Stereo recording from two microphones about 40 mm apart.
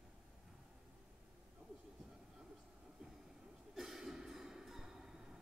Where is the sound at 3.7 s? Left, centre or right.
Centre.